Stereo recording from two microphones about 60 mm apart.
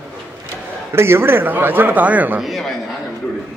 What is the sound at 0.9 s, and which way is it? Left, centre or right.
A man's voice, right.